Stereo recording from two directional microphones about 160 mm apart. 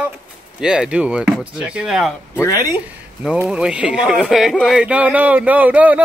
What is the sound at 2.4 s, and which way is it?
Speech, 20° left (ahead or behind).